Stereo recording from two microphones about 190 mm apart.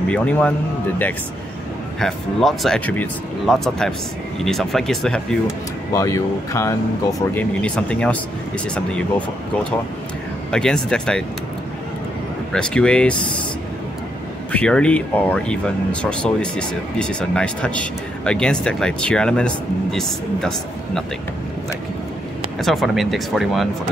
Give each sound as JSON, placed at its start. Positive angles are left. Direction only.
{"t": 0.1, "sound": "speech", "side_deg": 5}
{"t": 2.0, "sound": "speech", "side_deg": 0}
{"t": 5.9, "sound": "speech", "side_deg": 15}
{"t": 7.6, "sound": "speech", "side_deg": 5}
{"t": 10.5, "sound": "speech", "side_deg": 5}
{"t": 12.5, "sound": "speech", "side_deg": 5}
{"t": 14.5, "sound": "speech", "side_deg": 5}
{"t": 22.6, "sound": "speech", "side_deg": 0}